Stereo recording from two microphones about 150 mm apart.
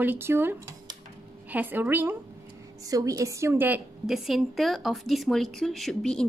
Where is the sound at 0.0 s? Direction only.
15° right (ahead or behind).